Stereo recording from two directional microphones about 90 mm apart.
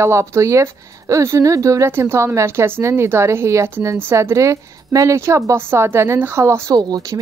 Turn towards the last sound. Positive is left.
turn(degrees=-45)  # may be behind; listen again after turning